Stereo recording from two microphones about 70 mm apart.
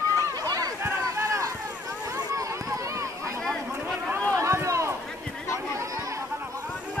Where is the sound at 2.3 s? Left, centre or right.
Right.